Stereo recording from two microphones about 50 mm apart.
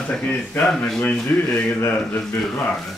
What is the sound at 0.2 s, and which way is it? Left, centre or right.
Speech, left.